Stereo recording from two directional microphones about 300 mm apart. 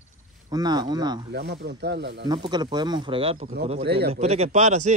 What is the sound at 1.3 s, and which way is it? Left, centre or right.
Speech, right.